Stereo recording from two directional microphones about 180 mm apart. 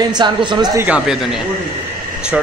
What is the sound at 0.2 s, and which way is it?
Speech, 25° right (ahead or behind).